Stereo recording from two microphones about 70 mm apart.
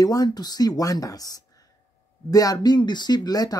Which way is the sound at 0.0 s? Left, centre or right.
Left.